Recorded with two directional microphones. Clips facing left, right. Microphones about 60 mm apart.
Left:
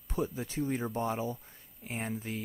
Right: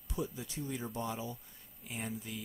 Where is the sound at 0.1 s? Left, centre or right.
Left.